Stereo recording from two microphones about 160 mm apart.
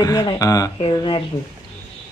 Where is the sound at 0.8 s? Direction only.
30° left (ahead or behind).